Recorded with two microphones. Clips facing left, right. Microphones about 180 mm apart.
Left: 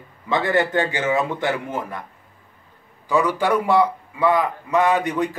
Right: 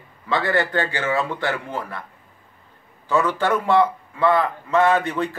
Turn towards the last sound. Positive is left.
turn(degrees=15)  # may be behind; listen again after turning